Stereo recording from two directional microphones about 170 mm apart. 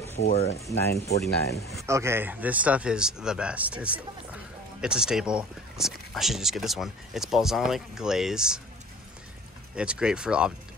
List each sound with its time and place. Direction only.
0.0 s speech: 40° left (ahead or behind)
0.6 s speech: 20° left (ahead or behind)
0.9 s speech: 70° left (ahead or behind)
1.9 s speech: 15° right (ahead or behind)
9.8 s speech: 5° right (ahead or behind)